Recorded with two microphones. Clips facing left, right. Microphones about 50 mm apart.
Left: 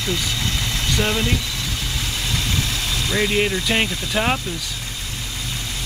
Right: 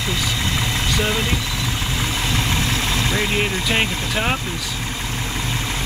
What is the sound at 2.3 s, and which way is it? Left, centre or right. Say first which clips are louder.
Vehicle: right 2 dB; right.